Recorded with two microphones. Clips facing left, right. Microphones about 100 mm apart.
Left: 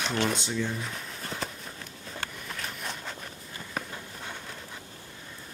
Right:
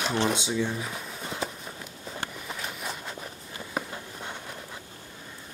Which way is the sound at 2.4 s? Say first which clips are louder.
Right 2 dB; 10° right (ahead or behind).